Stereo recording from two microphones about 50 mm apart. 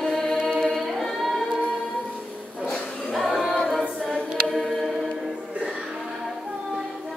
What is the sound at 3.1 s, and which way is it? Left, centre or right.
Music, centre.